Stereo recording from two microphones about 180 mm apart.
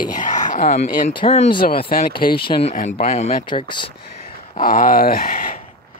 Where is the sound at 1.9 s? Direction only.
55° left (ahead or behind).